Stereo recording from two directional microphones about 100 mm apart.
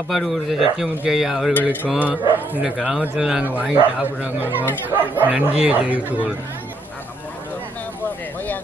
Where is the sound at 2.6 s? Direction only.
5° right (ahead or behind).